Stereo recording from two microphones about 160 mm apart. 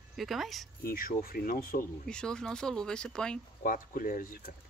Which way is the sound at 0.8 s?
65° left (ahead or behind).